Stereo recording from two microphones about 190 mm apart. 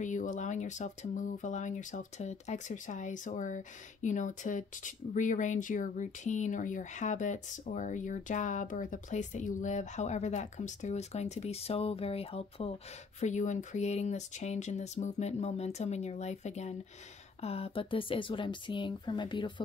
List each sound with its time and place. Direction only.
0.0 s speech: 40° left (ahead or behind); by 19.5 s 25° left (ahead or behind)